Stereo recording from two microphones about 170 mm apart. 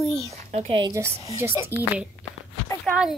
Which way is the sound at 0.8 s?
15° right (ahead or behind).